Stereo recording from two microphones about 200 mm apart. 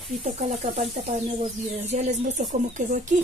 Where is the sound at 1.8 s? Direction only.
35° right (ahead or behind).